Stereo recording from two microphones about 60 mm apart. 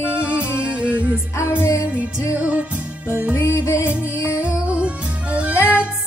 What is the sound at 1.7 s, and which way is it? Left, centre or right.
Music, left.